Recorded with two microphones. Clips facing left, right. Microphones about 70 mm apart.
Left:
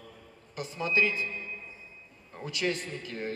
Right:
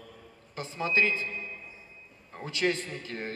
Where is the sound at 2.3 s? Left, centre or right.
Right.